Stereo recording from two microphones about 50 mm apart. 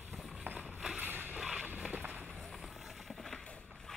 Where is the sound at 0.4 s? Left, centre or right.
Right.